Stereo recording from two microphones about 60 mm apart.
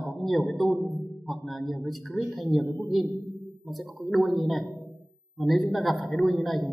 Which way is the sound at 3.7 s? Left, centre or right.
Centre.